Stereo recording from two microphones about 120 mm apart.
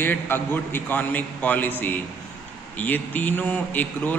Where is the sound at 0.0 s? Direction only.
15° left (ahead or behind).